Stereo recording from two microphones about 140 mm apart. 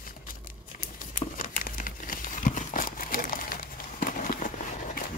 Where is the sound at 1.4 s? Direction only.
85° left.